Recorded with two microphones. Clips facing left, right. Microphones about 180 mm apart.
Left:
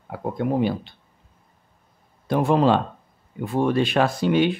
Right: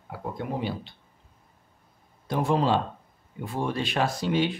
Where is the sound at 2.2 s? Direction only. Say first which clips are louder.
Left 6 dB; 60° left (ahead or behind).